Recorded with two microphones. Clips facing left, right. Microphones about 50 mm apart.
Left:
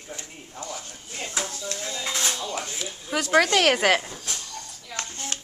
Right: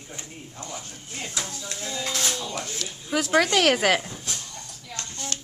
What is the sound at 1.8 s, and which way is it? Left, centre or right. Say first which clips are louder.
Speech: right 1 dB; centre.